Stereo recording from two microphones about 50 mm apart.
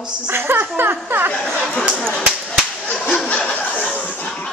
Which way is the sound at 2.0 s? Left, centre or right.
Centre.